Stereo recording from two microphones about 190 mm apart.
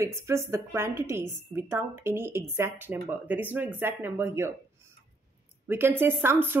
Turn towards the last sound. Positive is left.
turn(degrees=-10)  # may be behind; listen again after turning